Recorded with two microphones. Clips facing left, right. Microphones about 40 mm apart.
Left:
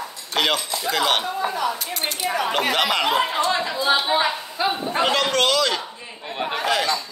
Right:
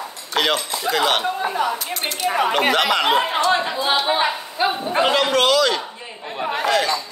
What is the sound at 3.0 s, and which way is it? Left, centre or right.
Speech, right.